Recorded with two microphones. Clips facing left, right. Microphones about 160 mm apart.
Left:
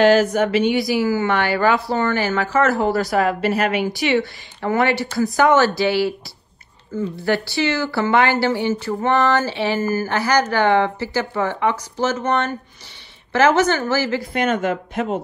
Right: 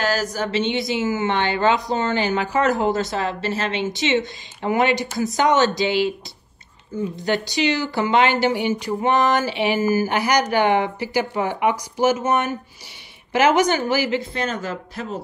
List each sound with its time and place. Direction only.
0.0 s speech: 40° right (ahead or behind)
0.4 s a woman's voice: 25° right (ahead or behind)
7.2 s a woman's voice: 20° right (ahead or behind); by 15.0 s 35° right (ahead or behind)